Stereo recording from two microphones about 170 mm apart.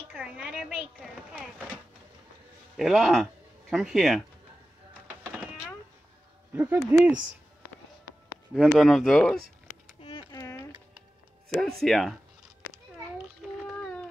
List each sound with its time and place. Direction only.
0.1 s a sound: 5° right (ahead or behind)
2.8 s speech: centre (ahead or behind)
5.2 s vehicle: 10° right (ahead or behind)
6.5 s speech: 10° right (ahead or behind)
8.7 s speech: centre (ahead or behind)
10.3 s a sound: 20° left (ahead or behind)
11.8 s speech: centre (ahead or behind)